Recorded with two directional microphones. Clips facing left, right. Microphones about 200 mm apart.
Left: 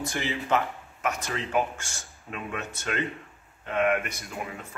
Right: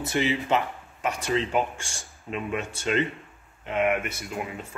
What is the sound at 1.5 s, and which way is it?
Speech, 30° right (ahead or behind).